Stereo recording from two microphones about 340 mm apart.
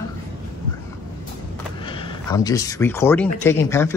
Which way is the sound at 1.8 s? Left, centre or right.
Centre.